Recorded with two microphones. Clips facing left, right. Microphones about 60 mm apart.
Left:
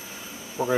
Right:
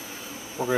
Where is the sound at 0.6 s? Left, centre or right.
Centre.